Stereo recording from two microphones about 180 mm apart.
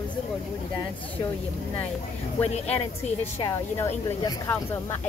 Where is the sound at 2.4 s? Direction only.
35° left (ahead or behind).